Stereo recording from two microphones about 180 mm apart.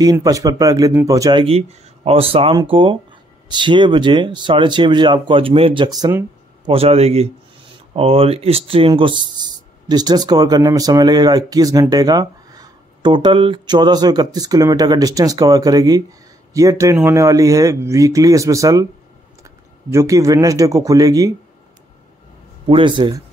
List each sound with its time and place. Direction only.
0.0 s speech: 20° right (ahead or behind)
1.4 s speech: 35° right (ahead or behind)
6.7 s speech: 35° right (ahead or behind); by 18.9 s 20° right (ahead or behind)
19.9 s speech: 15° right (ahead or behind)
22.7 s speech: 25° right (ahead or behind)